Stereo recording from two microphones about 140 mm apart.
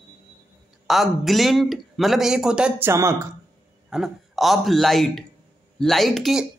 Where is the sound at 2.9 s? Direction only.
20° right (ahead or behind).